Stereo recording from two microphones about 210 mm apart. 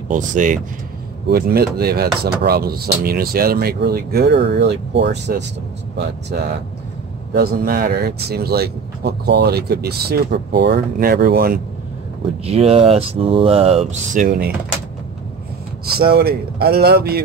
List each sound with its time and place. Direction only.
0.1 s speech: 40° right (ahead or behind); by 5.4 s 55° right (ahead or behind)
7.3 s speech: 45° right (ahead or behind)
12.4 s speech: 30° right (ahead or behind)
15.8 s speech: 50° right (ahead or behind)